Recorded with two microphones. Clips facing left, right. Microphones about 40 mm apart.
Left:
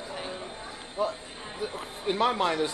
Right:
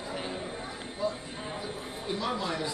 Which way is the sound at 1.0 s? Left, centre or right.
Left.